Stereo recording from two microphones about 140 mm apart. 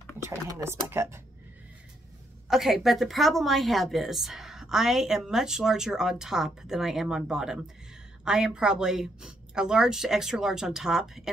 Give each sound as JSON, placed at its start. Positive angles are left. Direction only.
{"t": 0.2, "sound": "speech", "side_deg": -20}
{"t": 2.4, "sound": "a woman's voice", "side_deg": 0}